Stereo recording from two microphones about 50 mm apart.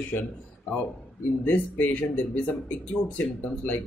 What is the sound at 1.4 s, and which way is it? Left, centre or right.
Speech, left.